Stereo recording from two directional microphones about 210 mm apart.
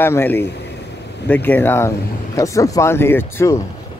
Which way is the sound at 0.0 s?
10° left (ahead or behind).